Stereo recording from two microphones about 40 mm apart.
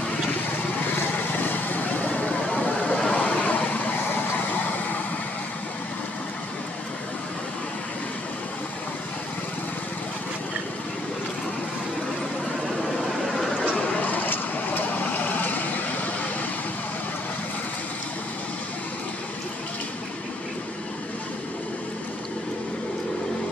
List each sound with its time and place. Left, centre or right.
0.8 s vehicle: left
2.4 s a sound: left
3.0 s vehicle: left
4.1 s vehicle: left
14.0 s vehicle: left